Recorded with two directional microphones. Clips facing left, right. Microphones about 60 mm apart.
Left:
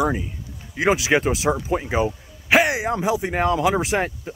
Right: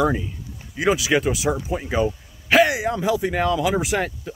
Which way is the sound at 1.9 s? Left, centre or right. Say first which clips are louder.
Even; left.